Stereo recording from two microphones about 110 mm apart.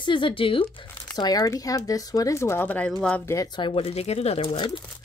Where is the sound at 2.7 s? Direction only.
15° left (ahead or behind).